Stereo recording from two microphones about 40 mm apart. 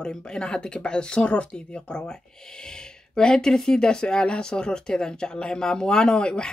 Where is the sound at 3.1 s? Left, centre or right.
Centre.